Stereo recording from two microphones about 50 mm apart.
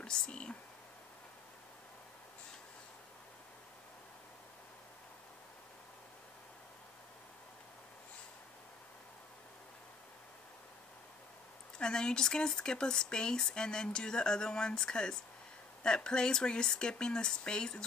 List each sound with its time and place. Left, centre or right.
0.0 s speech: centre
11.8 s speech: centre